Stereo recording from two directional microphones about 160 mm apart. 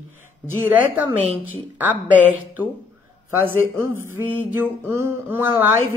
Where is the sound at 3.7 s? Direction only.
15° right (ahead or behind).